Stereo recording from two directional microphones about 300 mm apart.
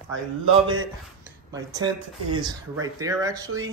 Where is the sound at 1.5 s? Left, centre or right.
Centre.